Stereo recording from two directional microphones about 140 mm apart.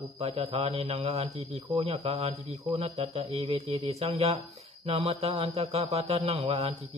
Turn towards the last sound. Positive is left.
turn(degrees=-45)  # may be behind; listen again after turning